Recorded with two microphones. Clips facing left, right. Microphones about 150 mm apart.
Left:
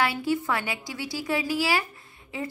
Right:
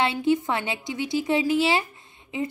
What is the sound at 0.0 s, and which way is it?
A woman's voice, 20° right (ahead or behind).